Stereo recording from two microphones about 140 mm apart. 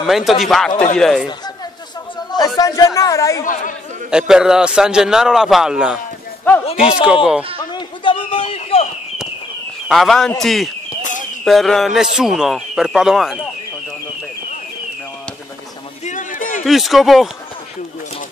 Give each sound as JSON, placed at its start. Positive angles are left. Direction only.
{"t": 0.0, "sound": "a man's voice", "side_deg": 0}
{"t": 2.3, "sound": "a man's voice", "side_deg": 25}
{"t": 4.1, "sound": "a man's voice", "side_deg": -5}
{"t": 6.6, "sound": "speech", "side_deg": 45}
{"t": 7.7, "sound": "a sound", "side_deg": 35}
{"t": 9.8, "sound": "a man's voice", "side_deg": 0}
{"t": 16.1, "sound": "a sound", "side_deg": 70}
{"t": 16.6, "sound": "a man's voice", "side_deg": 0}